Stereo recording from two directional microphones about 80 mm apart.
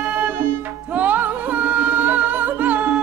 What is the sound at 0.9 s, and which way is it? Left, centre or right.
Music, right.